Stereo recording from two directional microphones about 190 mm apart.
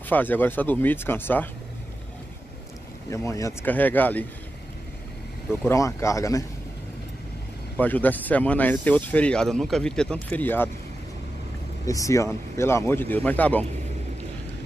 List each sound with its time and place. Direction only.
0.1 s speech: 10° left (ahead or behind)
3.1 s speech: 15° left (ahead or behind)
5.7 s speech: 15° left (ahead or behind)
7.7 s speech: 10° left (ahead or behind)
11.8 s speech: 15° left (ahead or behind)